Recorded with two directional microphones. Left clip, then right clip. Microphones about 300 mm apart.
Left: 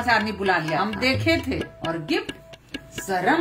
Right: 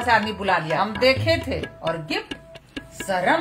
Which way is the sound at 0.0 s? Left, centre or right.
Right.